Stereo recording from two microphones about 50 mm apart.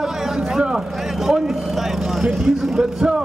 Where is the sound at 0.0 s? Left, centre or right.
Centre.